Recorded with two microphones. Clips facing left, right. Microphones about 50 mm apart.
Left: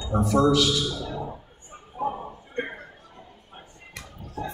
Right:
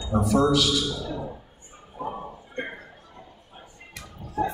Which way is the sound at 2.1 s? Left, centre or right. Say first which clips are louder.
Right 1 dB; centre.